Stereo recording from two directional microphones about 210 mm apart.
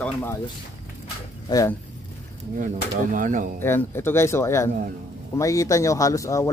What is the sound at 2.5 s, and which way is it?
Speech, 40° right (ahead or behind).